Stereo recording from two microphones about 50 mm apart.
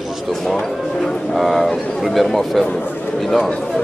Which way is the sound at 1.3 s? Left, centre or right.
Centre.